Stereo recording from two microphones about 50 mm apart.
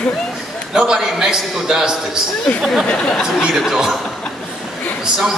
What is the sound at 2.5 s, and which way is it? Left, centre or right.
Speech, centre.